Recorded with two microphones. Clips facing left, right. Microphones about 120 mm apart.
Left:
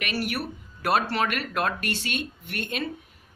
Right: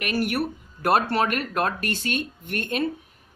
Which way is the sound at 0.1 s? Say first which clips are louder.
Right 7 dB; 50° right (ahead or behind).